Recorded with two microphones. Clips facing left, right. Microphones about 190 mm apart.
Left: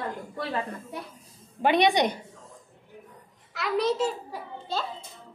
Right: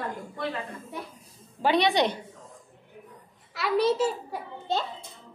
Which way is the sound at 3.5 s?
Centre (ahead or behind).